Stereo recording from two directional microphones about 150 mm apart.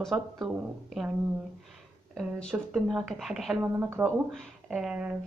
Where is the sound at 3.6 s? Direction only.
15° right (ahead or behind).